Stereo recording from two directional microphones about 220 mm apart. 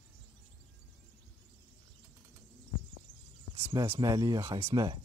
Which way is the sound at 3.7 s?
15° right (ahead or behind).